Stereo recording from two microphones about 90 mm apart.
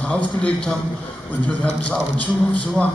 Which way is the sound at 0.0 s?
15° left (ahead or behind).